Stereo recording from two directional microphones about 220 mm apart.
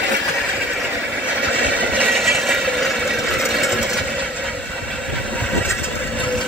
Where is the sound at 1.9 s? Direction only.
Centre (ahead or behind).